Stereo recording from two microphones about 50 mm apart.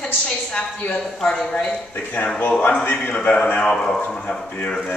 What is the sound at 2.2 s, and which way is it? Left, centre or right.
A man's voice, left.